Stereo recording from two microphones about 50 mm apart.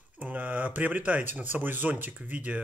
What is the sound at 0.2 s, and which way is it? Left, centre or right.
Speech, right.